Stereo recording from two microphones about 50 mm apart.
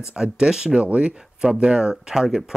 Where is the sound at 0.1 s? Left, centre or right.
Centre.